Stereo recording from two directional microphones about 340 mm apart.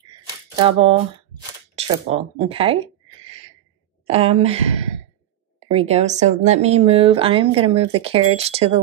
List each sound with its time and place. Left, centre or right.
0.6 s speech: centre
4.1 s speech: centre
5.7 s speech: centre